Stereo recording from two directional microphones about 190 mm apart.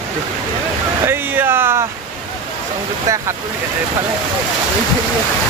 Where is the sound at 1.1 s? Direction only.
10° right (ahead or behind).